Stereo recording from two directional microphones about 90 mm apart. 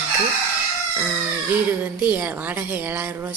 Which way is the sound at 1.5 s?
20° right (ahead or behind).